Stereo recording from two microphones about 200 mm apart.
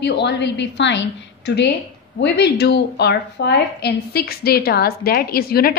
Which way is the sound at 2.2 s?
55° left (ahead or behind).